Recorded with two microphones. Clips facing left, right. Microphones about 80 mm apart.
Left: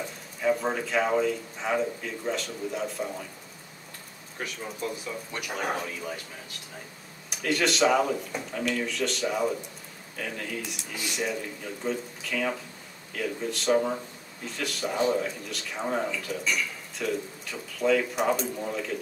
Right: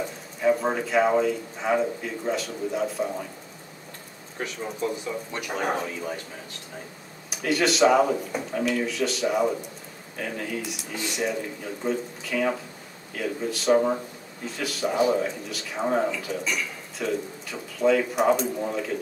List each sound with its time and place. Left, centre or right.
0.0 s speech: centre
4.4 s speech: centre
5.3 s speech: centre
7.2 s speech: centre
13.7 s speech: centre
14.4 s speech: centre
15.0 s speech: centre
15.2 s speech: centre